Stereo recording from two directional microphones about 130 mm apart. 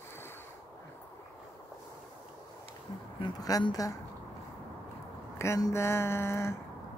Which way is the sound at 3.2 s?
35° left (ahead or behind).